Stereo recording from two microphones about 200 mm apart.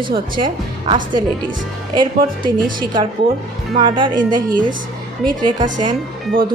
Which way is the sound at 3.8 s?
25° right (ahead or behind).